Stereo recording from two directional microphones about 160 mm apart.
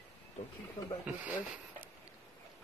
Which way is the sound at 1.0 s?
10° right (ahead or behind).